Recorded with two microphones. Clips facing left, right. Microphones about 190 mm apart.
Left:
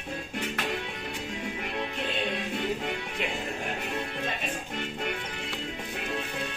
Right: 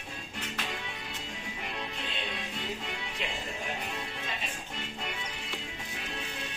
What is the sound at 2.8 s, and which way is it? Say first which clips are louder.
Music: left 6 dB; 60° left (ahead or behind).